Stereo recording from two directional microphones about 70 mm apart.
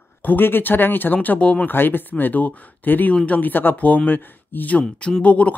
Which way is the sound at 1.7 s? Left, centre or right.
Left.